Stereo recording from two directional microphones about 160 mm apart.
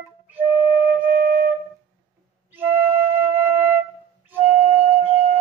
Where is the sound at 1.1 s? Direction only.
70° right (ahead or behind).